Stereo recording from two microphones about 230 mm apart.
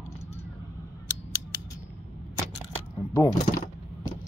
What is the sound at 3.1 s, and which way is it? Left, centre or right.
Speech, centre.